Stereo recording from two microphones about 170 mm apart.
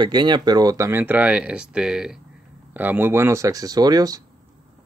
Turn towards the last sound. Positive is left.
turn(degrees=-20)  # may be behind; listen again after turning